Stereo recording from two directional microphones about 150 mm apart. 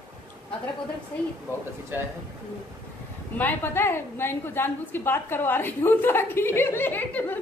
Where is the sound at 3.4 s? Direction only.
15° left (ahead or behind).